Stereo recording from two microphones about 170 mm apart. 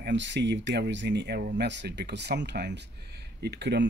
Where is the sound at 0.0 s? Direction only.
90° right.